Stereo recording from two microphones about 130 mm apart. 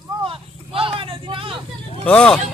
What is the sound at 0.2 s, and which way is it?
Vehicle, 45° right (ahead or behind).